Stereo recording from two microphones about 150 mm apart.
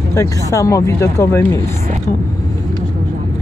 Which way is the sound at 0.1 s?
20° left (ahead or behind).